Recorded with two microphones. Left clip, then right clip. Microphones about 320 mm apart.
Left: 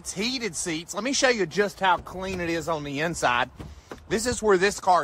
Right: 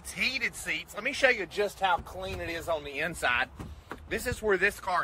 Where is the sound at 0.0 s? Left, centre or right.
Centre.